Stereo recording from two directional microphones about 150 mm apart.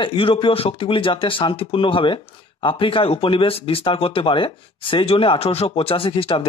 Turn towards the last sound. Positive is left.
turn(degrees=40)  # may be behind; listen again after turning